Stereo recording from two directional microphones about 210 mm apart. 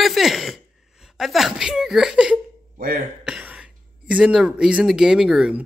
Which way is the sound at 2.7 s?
45° right (ahead or behind).